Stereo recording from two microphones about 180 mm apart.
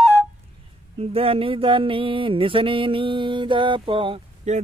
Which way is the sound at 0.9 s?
30° right (ahead or behind).